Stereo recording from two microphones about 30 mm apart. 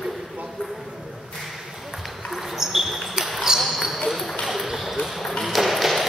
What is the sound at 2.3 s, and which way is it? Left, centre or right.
Basketball bounce, centre.